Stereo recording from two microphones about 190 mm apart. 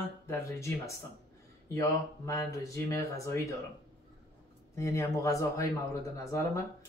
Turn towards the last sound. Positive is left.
turn(degrees=15)  # may be behind; listen again after turning